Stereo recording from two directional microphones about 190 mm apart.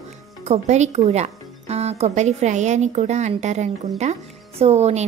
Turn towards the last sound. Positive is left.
turn(degrees=-35)  # may be behind; listen again after turning